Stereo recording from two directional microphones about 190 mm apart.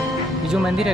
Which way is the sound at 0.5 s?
5° right (ahead or behind).